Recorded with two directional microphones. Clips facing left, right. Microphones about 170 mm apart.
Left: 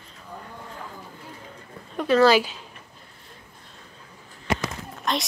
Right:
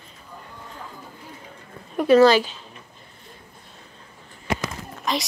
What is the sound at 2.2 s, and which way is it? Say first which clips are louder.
Speech: right 2 dB; 10° left (ahead or behind).